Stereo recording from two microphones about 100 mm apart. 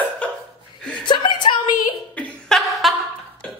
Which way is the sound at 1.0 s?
50° left (ahead or behind).